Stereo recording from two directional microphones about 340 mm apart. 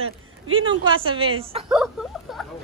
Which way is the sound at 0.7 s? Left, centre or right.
Centre.